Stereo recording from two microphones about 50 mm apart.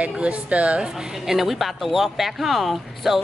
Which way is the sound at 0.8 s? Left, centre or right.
Centre.